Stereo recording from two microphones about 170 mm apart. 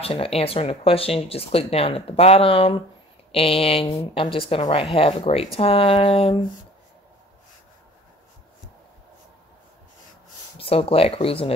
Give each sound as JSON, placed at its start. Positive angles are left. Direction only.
{"t": 0.0, "sound": "speech", "side_deg": 35}
{"t": 10.6, "sound": "speech", "side_deg": 35}